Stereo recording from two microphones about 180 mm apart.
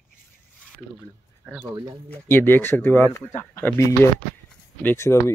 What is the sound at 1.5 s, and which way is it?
Speech, 20° right (ahead or behind).